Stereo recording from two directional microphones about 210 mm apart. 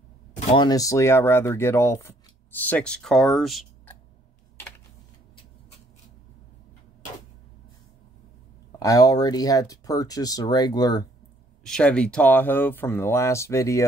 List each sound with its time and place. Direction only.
0.5 s speech: 20° left (ahead or behind); by 3.9 s centre (ahead or behind)
8.7 s speech: 15° left (ahead or behind)
11.6 s speech: 5° left (ahead or behind)